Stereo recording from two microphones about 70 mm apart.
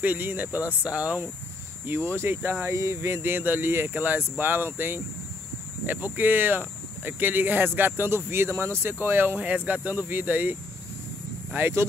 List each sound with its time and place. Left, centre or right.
0.0 s speech: right
1.9 s speech: right
2.7 s speech: right
9.4 s speech: centre